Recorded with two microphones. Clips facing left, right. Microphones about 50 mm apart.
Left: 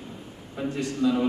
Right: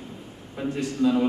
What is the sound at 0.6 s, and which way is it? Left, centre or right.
Speech, centre.